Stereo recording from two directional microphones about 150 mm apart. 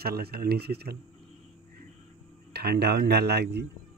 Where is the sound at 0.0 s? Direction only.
90° right.